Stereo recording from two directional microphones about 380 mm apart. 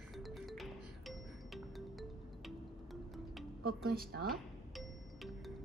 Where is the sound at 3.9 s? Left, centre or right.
Right.